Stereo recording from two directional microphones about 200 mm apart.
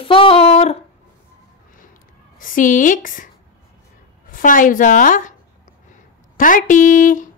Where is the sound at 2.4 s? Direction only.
40° left (ahead or behind).